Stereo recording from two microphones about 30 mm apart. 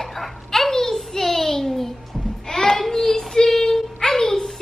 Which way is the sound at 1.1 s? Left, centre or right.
Centre.